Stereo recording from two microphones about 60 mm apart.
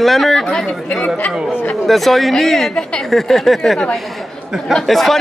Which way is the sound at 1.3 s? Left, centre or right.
Centre.